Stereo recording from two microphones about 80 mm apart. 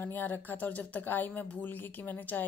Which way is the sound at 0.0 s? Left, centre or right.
Left.